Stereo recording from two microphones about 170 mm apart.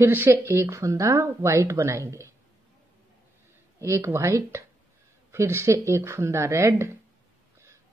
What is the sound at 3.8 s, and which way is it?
Speech, 15° right (ahead or behind).